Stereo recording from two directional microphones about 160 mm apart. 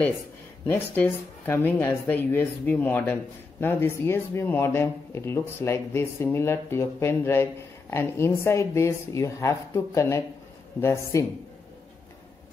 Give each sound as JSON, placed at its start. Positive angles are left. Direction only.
{"t": 0.7, "sound": "speech", "side_deg": 10}